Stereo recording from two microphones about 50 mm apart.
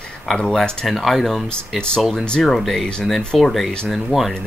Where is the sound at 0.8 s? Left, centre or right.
Centre.